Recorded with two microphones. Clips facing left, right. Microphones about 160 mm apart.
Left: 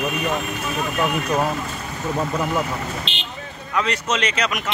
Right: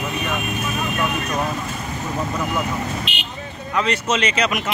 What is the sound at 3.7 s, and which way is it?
Speech, centre (ahead or behind).